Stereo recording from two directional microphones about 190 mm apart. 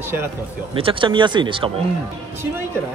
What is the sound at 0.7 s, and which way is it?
Speech, 25° right (ahead or behind).